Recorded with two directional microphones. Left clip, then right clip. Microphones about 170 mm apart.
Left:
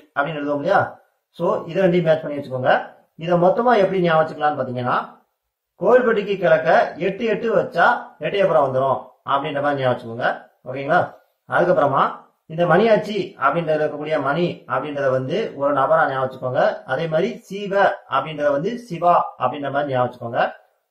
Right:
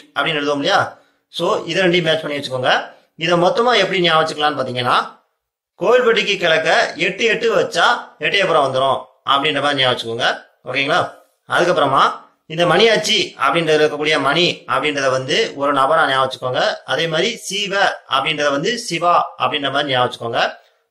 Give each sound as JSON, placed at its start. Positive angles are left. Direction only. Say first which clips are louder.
{"t": 0.1, "sound": "a man's voice", "louder": "right 4 dB", "side_deg": -25}